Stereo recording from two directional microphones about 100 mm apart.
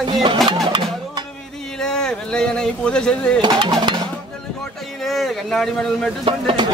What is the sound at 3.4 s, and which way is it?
Speech, 45° right (ahead or behind).